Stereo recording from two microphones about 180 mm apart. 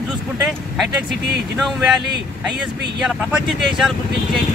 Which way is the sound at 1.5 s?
Centre (ahead or behind).